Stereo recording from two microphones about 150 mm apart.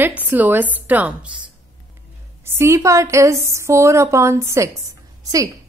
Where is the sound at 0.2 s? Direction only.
10° right (ahead or behind).